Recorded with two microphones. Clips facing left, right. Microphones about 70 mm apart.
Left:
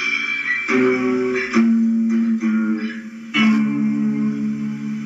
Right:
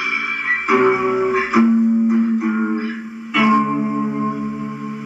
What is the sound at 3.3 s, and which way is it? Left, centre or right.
Music, right.